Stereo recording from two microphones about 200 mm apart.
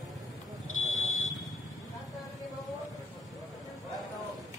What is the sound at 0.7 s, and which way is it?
Smoke detector, 90° left.